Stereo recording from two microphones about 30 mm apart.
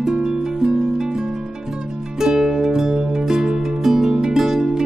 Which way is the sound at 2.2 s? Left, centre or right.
Centre.